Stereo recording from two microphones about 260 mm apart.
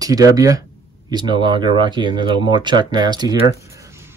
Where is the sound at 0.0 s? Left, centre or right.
Centre.